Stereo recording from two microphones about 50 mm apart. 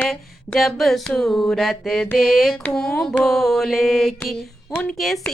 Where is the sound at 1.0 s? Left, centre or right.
Centre.